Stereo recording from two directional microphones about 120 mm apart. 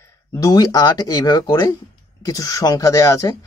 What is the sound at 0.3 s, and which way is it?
Speech, 30° left (ahead or behind).